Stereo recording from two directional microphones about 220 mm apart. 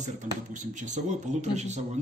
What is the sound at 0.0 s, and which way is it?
Speech, 35° right (ahead or behind).